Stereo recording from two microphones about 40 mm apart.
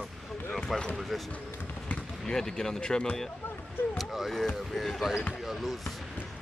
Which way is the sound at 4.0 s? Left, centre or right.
Centre.